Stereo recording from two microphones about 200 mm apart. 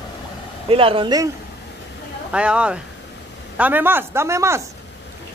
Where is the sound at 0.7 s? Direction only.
25° right (ahead or behind).